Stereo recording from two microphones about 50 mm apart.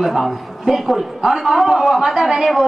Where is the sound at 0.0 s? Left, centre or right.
Centre.